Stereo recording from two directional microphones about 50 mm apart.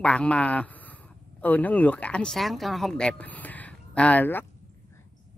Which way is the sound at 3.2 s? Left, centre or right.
Left.